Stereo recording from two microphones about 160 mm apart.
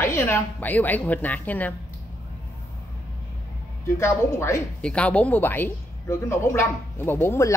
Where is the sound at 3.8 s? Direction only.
15° left (ahead or behind).